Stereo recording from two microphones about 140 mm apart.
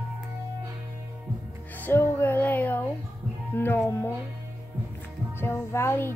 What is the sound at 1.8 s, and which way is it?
Speech, 15° left (ahead or behind).